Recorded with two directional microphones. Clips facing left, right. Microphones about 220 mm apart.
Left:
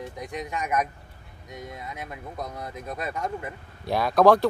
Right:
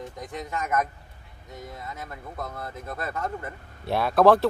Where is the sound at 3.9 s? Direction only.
Centre (ahead or behind).